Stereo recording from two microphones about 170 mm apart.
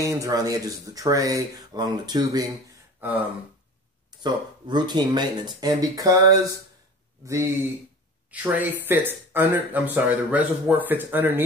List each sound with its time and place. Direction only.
0.0 s speech: 20° right (ahead or behind)
3.0 s a sound: 10° right (ahead or behind)
4.2 s speech: 25° right (ahead or behind)